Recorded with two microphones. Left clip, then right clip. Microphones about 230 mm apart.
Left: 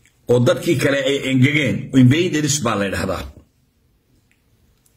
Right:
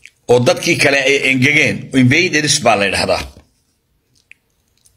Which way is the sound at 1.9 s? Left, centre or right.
Centre.